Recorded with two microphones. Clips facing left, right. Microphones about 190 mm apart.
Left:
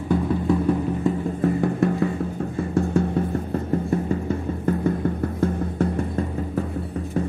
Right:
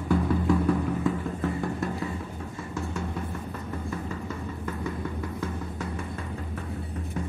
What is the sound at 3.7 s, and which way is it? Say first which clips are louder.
Music: left 12 dB; 40° left (ahead or behind).